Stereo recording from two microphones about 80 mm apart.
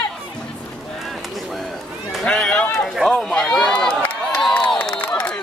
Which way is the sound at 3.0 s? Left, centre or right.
Centre.